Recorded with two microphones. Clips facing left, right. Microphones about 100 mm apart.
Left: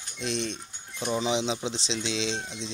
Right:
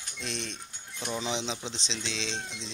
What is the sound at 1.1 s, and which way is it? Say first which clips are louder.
Speech: left 6 dB; 10° left (ahead or behind).